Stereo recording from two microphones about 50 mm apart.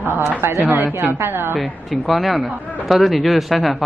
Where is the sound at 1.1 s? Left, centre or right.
Right.